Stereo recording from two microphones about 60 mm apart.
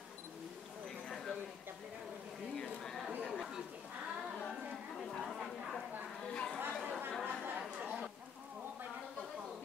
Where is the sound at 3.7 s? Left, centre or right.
Right.